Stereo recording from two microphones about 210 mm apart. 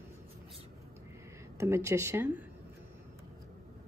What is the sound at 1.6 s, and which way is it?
Speech, 15° right (ahead or behind).